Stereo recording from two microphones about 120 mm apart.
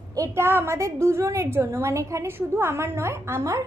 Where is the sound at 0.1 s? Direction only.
25° right (ahead or behind).